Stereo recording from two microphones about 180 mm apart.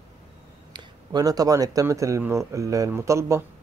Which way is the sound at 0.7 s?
20° right (ahead or behind).